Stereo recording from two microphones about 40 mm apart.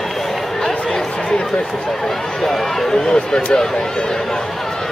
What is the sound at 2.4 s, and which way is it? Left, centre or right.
Speech, centre.